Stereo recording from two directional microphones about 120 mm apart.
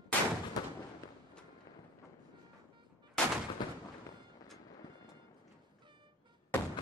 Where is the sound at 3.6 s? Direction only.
35° left (ahead or behind).